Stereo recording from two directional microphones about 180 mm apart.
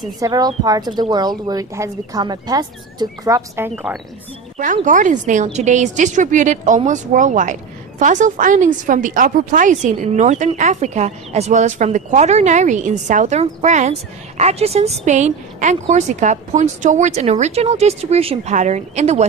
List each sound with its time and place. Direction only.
0.2 s speech: 20° right (ahead or behind); by 4.0 s 5° right (ahead or behind)
4.8 s a woman's voice: 45° right (ahead or behind)